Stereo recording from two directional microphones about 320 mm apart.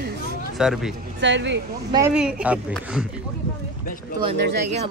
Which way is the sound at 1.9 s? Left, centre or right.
Centre.